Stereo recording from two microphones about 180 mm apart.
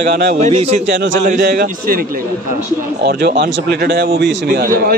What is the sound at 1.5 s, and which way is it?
Speech, 55° right (ahead or behind).